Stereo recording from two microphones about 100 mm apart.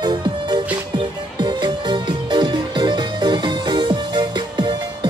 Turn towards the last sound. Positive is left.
turn(degrees=-50)  # may be behind; listen again after turning